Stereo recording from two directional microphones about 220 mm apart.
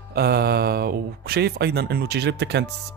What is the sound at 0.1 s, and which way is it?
Speech, 45° right (ahead or behind).